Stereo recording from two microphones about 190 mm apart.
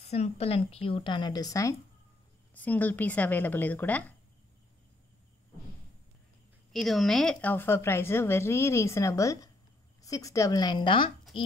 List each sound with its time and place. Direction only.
0.0 s a woman's voice: 35° left (ahead or behind); by 4.0 s 10° left (ahead or behind)
6.7 s a woman's voice: centre (ahead or behind); by 11.5 s 30° left (ahead or behind)